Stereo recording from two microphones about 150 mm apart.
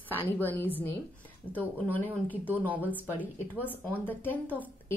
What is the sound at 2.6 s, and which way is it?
Speech, 10° right (ahead or behind).